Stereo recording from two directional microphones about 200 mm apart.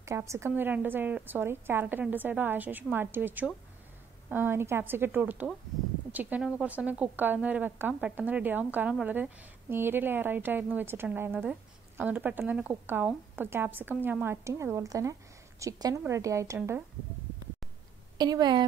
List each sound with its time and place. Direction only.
0.0 s speech: 15° right (ahead or behind)
18.1 s a woman's voice: 20° right (ahead or behind)